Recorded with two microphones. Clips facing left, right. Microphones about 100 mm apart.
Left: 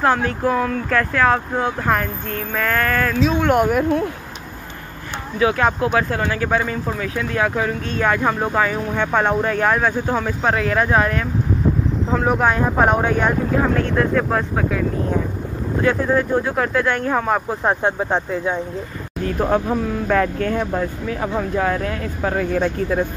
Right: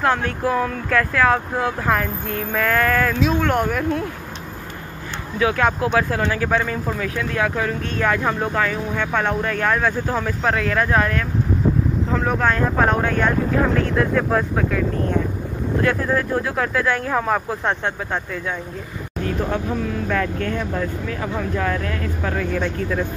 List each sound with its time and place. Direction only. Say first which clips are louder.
0.0 s speech: left 2 dB; 5° left (ahead or behind)
3.3 s speech: left 4 dB; 15° left (ahead or behind)
5.4 s speech: left 1 dB; 10° left (ahead or behind)
13.7 s speech: left 1 dB; centre (ahead or behind)
17.9 s speech: left 5 dB; 25° left (ahead or behind)
19.4 s speech: left 7 dB; 40° left (ahead or behind)